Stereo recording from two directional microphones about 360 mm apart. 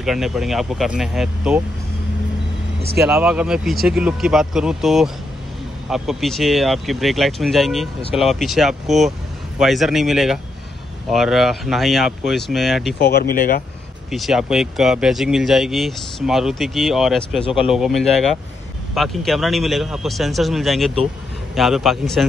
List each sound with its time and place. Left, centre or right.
0.0 s speech: centre
3.0 s speech: centre
13.0 s speech: left
14.1 s speech: centre